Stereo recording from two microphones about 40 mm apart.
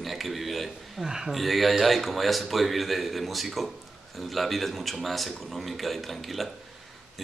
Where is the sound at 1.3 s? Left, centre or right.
Centre.